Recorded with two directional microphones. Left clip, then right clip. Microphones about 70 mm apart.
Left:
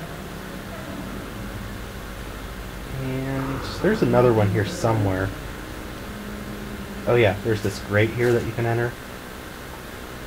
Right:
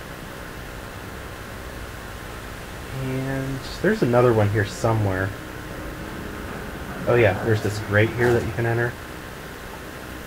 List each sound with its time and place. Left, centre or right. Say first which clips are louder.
3.8 s speech: even; centre
7.1 s speech: even; centre
7.5 s speech: right 1 dB; centre
7.9 s speech: right 1 dB; centre